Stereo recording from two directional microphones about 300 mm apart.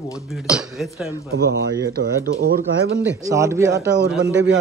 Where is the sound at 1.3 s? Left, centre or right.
Right.